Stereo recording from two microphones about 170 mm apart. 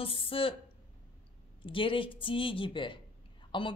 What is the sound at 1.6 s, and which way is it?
A woman's voice, 30° left (ahead or behind).